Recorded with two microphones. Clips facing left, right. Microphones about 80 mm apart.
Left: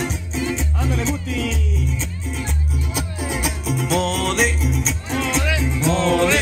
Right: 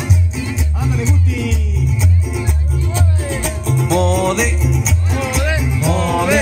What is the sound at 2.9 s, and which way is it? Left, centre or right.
Music, centre.